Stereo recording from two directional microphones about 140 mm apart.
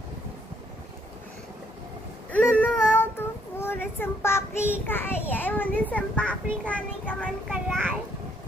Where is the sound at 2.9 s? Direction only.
15° left (ahead or behind).